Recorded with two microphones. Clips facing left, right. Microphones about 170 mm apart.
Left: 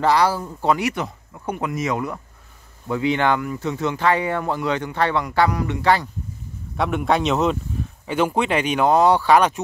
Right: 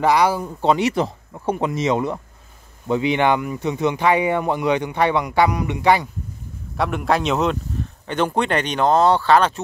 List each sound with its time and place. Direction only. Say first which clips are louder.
0.0 s speech: right 1 dB; 15° right (ahead or behind)
6.8 s speech: even; centre (ahead or behind)